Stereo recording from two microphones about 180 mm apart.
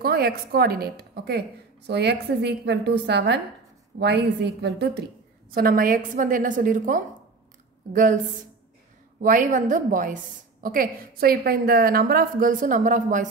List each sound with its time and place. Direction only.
0.0 s a woman's voice: 60° right (ahead or behind)
5.5 s a woman's voice: 55° right (ahead or behind)
9.2 s a woman's voice: 45° right (ahead or behind)